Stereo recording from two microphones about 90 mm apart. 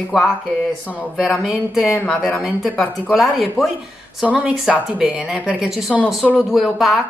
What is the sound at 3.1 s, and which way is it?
Speech, centre (ahead or behind).